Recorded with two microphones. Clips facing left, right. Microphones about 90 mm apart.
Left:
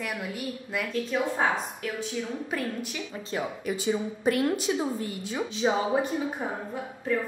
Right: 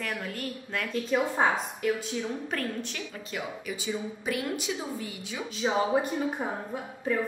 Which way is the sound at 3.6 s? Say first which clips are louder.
Left 5 dB; 45° left (ahead or behind).